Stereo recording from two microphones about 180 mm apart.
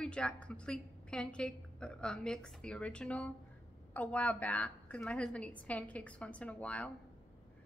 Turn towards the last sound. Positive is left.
turn(degrees=10)  # may be behind; listen again after turning